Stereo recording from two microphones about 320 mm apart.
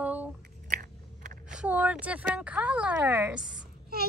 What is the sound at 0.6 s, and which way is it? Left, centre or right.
Chewing, right.